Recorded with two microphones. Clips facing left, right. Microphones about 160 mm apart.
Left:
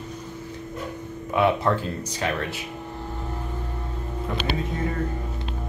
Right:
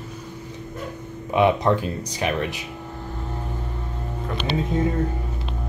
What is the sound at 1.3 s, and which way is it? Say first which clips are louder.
Speech: right 3 dB; 20° right (ahead or behind).